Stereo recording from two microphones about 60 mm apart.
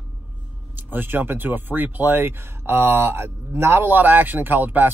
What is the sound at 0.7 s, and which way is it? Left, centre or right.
A man's voice, right.